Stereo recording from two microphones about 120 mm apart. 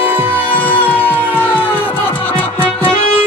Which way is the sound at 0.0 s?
15° right (ahead or behind).